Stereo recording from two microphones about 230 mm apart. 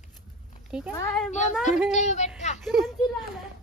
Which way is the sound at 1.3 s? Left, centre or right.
Left.